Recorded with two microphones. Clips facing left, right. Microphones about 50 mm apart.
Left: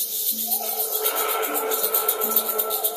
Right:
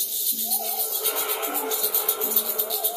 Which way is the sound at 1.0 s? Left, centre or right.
Left.